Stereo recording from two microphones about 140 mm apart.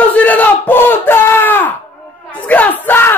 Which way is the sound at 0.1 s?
10° left (ahead or behind).